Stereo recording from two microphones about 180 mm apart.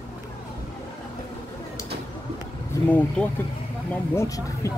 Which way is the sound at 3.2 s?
5° left (ahead or behind).